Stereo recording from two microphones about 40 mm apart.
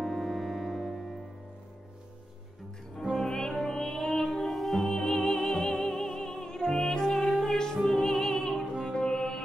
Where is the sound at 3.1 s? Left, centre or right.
Centre.